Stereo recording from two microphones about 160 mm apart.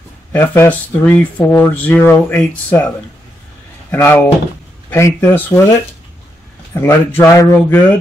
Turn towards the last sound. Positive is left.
turn(degrees=15)  # may be behind; listen again after turning